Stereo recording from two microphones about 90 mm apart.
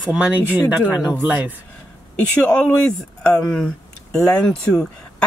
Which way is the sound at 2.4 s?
10° left (ahead or behind).